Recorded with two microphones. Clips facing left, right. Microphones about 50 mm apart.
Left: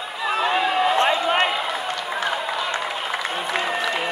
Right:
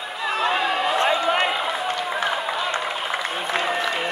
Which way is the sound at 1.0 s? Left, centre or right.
Left.